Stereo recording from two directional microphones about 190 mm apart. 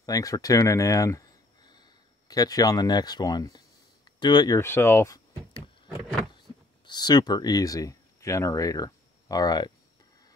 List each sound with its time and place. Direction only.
0.0 s speech: 20° left (ahead or behind)
6.9 s speech: 20° left (ahead or behind)